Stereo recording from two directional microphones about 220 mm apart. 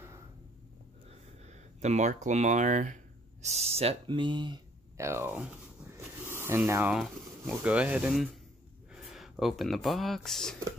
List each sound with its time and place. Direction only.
1.4 s speech: 30° right (ahead or behind); by 10.6 s centre (ahead or behind)